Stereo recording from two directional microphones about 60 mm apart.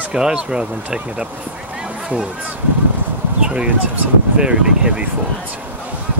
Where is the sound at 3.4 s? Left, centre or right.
Centre.